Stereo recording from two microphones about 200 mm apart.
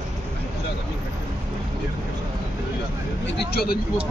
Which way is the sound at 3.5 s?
50° left (ahead or behind).